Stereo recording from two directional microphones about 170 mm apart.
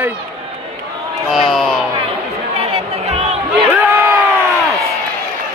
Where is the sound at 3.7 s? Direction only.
10° right (ahead or behind).